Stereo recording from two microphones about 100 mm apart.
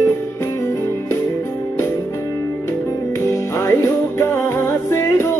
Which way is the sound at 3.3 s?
25° left (ahead or behind).